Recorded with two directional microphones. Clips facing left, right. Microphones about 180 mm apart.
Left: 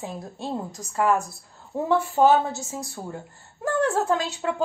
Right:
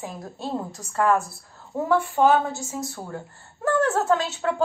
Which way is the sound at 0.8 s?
15° left (ahead or behind).